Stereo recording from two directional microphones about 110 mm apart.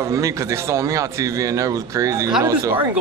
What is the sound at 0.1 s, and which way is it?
A man's voice, 25° right (ahead or behind).